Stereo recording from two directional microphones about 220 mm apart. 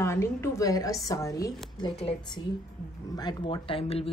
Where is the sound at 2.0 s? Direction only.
25° left (ahead or behind).